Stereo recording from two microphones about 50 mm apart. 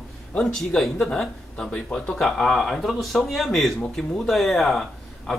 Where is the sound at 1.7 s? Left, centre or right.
Left.